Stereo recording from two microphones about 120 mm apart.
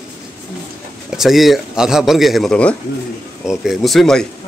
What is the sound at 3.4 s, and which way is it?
Speech, 5° right (ahead or behind).